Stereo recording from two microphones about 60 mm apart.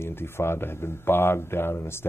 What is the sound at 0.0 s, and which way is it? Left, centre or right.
Speech, left.